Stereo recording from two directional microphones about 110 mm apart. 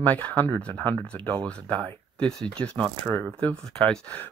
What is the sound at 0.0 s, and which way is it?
Speech, 15° left (ahead or behind).